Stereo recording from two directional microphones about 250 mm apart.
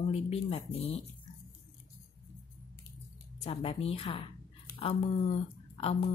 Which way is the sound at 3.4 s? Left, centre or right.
Left.